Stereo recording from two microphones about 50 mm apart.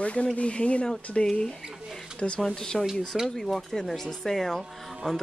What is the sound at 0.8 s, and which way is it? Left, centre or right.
Speech, centre.